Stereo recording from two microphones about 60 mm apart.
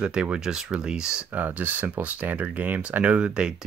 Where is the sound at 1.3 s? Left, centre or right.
Right.